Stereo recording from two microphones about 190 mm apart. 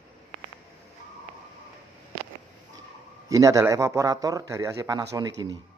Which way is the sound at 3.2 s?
15° right (ahead or behind).